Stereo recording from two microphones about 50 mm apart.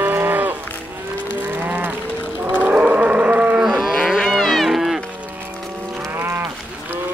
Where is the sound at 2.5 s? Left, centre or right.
Right.